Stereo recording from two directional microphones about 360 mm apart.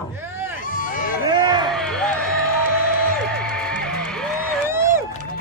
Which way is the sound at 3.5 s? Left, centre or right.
Centre.